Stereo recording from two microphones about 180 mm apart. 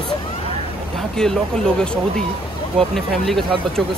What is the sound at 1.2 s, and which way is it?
Speech, 5° left (ahead or behind).